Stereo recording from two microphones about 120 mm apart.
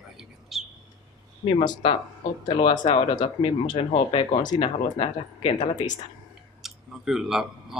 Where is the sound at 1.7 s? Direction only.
50° left (ahead or behind).